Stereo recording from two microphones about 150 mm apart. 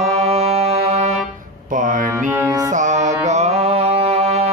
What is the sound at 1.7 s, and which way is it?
Mantra, 60° right (ahead or behind).